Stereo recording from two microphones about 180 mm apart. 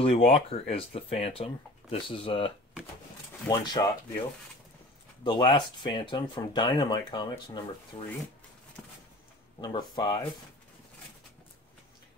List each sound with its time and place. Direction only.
0.0 s speech: 35° left (ahead or behind)
3.8 s speech: 25° left (ahead or behind)
5.2 s speech: 25° left (ahead or behind)
9.6 s speech: 25° left (ahead or behind)